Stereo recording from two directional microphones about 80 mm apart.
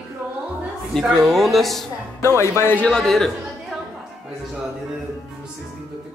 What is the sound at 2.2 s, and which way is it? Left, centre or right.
Speech, left.